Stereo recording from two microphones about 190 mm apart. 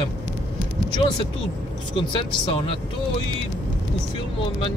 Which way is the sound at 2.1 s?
25° left (ahead or behind).